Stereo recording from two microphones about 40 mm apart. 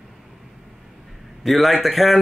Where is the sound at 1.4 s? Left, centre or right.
Centre.